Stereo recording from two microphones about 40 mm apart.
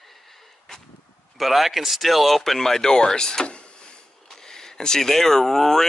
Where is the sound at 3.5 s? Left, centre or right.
Left.